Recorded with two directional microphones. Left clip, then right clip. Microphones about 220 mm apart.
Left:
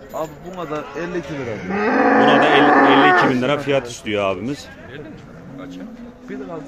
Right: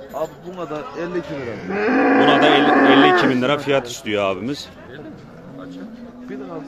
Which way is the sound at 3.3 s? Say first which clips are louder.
Even; centre (ahead or behind).